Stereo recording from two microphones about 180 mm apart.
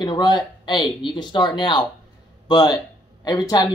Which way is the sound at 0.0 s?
20° left (ahead or behind).